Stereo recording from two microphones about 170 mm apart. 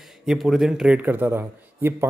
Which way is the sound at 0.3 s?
Centre (ahead or behind).